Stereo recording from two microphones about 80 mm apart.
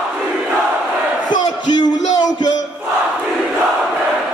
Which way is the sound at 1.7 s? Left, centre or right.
Left.